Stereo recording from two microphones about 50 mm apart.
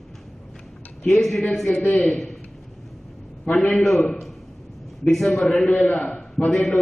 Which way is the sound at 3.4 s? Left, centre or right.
Left.